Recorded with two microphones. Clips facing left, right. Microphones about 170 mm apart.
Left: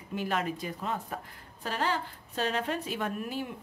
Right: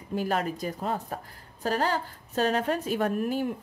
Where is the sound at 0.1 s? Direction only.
40° right (ahead or behind).